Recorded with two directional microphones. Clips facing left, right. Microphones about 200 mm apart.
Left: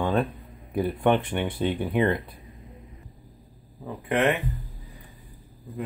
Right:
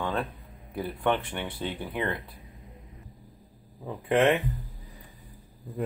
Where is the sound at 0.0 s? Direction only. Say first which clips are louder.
Left 6 dB; 15° left (ahead or behind).